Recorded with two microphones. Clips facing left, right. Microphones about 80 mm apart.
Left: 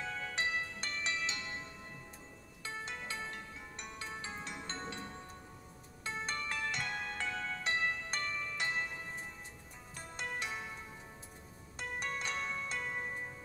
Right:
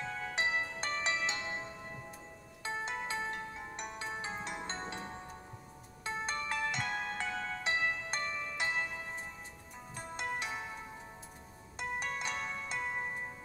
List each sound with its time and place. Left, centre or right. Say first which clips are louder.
0.0 s music: right 2 dB; centre; by 3.7 s right
3.7 s music: right 3 dB; right
6.0 s music: right 2 dB; centre
11.8 s music: right 2 dB; centre